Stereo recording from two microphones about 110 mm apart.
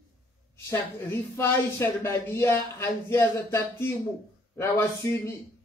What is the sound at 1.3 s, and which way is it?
Speech, 25° left (ahead or behind).